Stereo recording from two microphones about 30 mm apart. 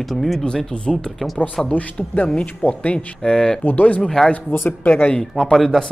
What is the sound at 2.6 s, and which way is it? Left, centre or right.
Speech, left.